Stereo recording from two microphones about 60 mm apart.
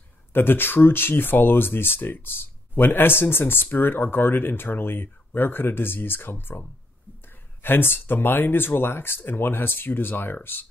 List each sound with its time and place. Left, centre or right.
0.3 s speech: left
7.6 s speech: left